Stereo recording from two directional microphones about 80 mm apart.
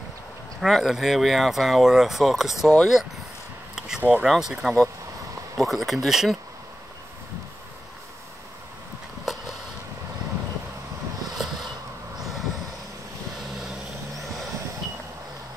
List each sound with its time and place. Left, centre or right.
0.6 s speech: centre
4.0 s speech: centre
4.3 s speech: centre
9.3 s vehicle: centre
11.4 s a sound: centre
12.2 s vehicle: centre